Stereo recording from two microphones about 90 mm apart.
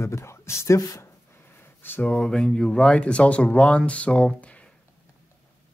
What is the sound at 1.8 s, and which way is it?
Speech, 20° left (ahead or behind).